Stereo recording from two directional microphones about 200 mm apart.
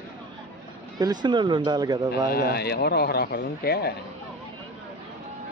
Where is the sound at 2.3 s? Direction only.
50° left (ahead or behind).